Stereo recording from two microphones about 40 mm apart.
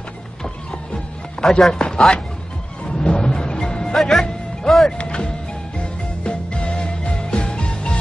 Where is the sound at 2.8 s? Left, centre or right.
Left.